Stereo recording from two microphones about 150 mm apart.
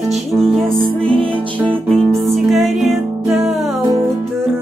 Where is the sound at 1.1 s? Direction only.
35° right (ahead or behind).